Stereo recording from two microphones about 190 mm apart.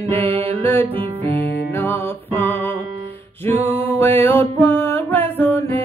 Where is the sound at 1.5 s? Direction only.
10° left (ahead or behind).